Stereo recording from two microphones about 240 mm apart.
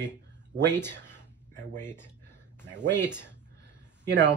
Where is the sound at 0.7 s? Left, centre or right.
Centre.